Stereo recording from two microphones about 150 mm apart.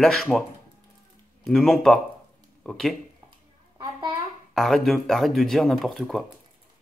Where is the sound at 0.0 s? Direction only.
Centre (ahead or behind).